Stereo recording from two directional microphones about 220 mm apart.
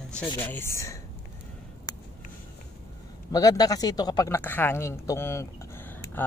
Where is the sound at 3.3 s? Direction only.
15° left (ahead or behind).